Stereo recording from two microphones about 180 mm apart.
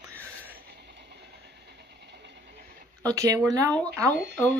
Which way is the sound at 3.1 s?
20° right (ahead or behind).